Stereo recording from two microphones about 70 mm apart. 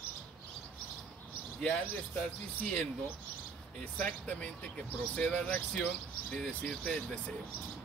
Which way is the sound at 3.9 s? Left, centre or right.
Left.